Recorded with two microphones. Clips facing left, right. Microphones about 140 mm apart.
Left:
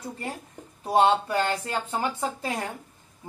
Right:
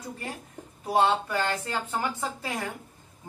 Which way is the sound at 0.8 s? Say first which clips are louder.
Left 3 dB; 20° left (ahead or behind).